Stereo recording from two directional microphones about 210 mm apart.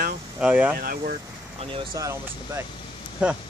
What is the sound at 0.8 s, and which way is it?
Speech, 40° right (ahead or behind).